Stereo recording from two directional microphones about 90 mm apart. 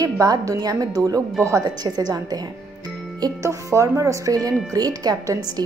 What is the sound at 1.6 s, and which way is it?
Speech, 50° right (ahead or behind).